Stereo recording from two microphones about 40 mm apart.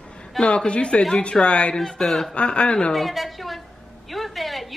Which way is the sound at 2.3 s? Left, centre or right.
Left.